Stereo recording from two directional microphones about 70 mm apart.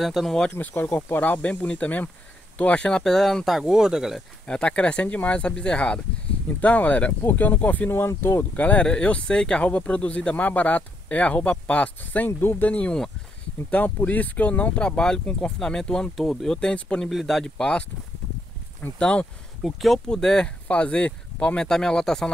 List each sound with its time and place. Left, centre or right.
0.0 s speech: centre
0.6 s speech: left; by 4.2 s centre
4.5 s speech: centre; by 8.6 s left
8.6 s speech: centre
16.7 s speech: centre
17.1 s speech: centre
18.9 s speech: centre
19.6 s speech: centre